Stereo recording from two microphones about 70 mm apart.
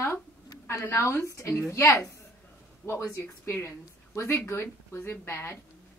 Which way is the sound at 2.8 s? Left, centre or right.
Left.